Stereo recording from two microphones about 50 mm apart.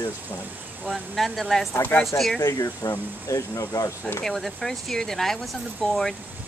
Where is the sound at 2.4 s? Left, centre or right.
Left.